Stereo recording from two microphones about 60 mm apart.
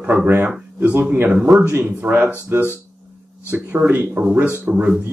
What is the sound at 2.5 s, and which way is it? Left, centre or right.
Speech, right.